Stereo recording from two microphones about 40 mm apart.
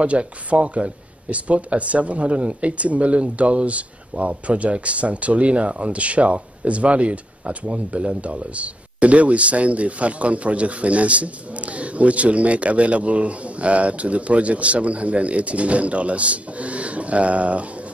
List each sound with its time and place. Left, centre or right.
0.0 s speech: right